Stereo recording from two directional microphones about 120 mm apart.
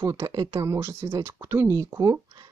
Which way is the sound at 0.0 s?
25° right (ahead or behind).